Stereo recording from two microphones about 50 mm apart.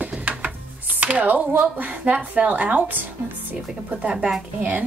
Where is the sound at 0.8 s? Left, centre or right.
Right.